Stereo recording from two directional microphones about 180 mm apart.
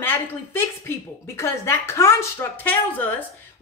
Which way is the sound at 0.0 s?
15° left (ahead or behind).